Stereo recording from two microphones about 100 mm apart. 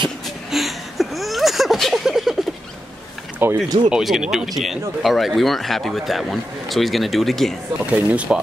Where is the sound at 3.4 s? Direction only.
20° right (ahead or behind).